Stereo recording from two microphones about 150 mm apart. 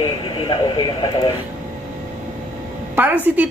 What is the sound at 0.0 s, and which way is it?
Speech, 35° left (ahead or behind).